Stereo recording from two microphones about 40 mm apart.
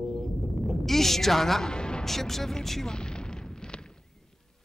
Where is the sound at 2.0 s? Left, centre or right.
Centre.